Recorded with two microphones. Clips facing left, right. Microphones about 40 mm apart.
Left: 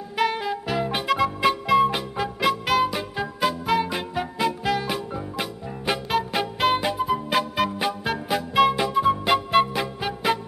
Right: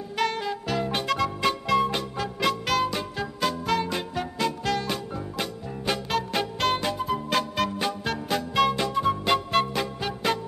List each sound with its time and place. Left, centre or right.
0.2 s music: centre